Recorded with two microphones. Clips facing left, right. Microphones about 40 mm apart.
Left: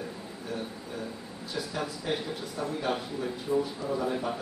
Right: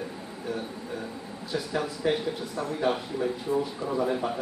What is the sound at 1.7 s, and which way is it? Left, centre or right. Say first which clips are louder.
Speech: right 6 dB; centre.